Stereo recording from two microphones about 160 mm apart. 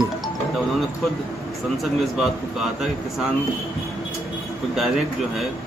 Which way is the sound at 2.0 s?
Centre (ahead or behind).